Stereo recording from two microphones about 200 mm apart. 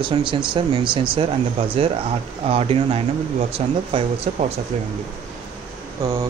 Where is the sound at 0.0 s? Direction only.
25° right (ahead or behind).